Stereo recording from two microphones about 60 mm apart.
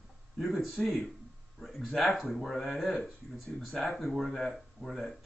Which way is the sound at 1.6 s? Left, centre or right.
Centre.